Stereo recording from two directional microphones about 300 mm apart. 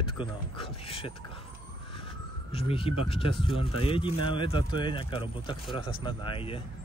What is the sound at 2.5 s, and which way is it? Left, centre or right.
Speech, centre.